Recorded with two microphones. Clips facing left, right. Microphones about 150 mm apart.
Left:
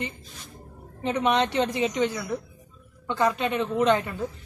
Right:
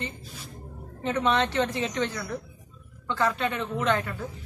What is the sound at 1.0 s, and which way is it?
Speech, 15° left (ahead or behind).